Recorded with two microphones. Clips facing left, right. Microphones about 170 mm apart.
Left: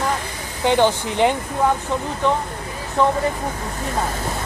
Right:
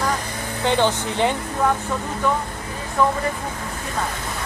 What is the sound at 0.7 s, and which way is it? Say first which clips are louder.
Speech: left 3 dB; 15° left (ahead or behind).